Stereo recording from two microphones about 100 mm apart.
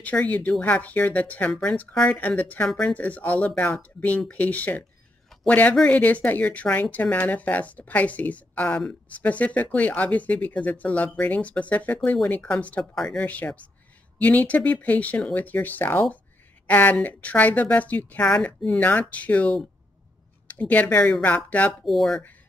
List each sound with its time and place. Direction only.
0.0 s speech: 15° left (ahead or behind)
21.8 s speech: centre (ahead or behind)